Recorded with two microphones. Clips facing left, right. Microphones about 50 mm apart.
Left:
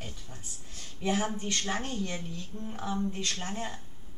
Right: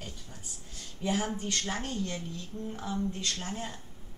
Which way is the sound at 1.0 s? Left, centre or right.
Left.